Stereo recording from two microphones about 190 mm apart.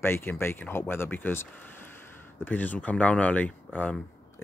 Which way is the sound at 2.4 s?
10° left (ahead or behind).